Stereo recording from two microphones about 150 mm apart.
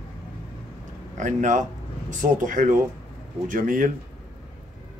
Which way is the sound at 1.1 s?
55° right (ahead or behind).